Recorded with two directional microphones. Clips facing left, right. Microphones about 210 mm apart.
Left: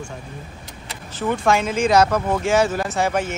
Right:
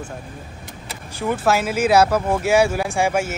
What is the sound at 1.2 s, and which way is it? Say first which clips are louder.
Speech: even; 5° right (ahead or behind).